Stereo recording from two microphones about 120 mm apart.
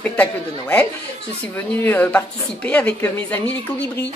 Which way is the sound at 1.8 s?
15° left (ahead or behind).